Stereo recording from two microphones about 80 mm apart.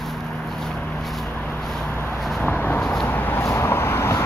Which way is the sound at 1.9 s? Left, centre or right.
Left.